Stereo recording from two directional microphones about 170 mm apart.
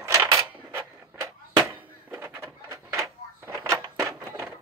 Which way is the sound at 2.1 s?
15° right (ahead or behind).